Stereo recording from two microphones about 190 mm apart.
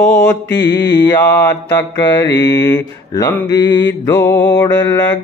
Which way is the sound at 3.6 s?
20° left (ahead or behind).